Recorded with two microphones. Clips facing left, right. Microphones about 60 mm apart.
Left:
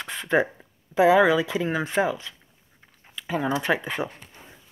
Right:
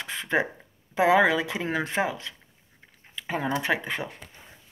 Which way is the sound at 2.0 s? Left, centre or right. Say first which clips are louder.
Left 4 dB; centre.